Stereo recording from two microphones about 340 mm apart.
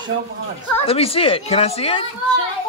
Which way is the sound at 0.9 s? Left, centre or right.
Centre.